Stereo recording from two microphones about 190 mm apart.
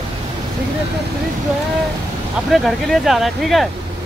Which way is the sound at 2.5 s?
Centre (ahead or behind).